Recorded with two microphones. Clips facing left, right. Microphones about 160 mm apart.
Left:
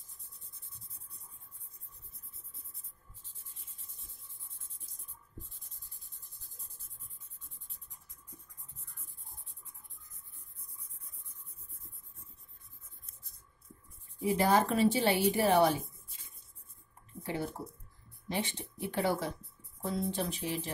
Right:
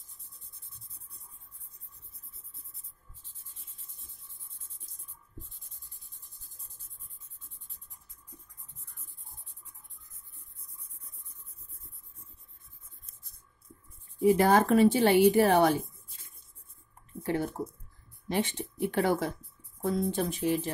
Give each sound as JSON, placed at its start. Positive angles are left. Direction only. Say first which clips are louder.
{"t": 14.2, "sound": "speech", "louder": "right 5 dB", "side_deg": -60}
{"t": 18.3, "sound": "speech", "louder": "right 6 dB", "side_deg": -55}